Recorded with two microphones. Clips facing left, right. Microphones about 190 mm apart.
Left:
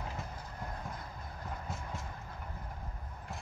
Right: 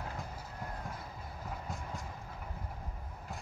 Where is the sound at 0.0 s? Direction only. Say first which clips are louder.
Even; centre (ahead or behind).